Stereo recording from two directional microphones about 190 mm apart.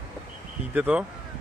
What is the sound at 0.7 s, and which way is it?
Speech, 5° right (ahead or behind).